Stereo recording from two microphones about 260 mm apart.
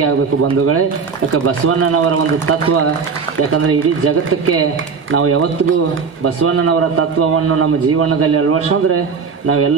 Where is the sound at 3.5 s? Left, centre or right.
Right.